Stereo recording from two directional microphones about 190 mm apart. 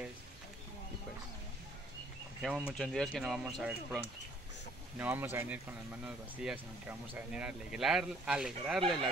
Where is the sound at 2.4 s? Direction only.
Centre (ahead or behind).